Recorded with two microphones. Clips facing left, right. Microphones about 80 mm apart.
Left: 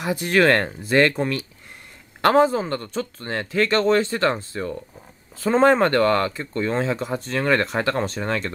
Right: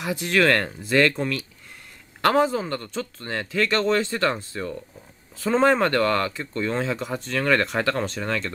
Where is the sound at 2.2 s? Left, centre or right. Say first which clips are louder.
Left 3 dB; centre.